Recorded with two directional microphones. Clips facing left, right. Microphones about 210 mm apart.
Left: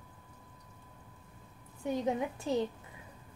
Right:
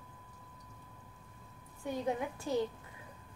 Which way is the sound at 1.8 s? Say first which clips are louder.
Left 3 dB; 20° left (ahead or behind).